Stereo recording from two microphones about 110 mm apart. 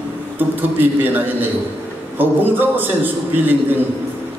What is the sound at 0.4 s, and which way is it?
A man's voice, 20° right (ahead or behind).